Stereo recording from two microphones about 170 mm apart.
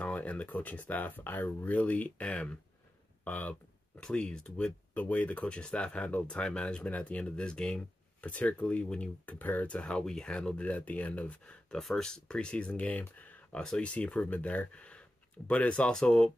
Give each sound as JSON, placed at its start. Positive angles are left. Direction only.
{"t": 0.0, "sound": "speech", "side_deg": 10}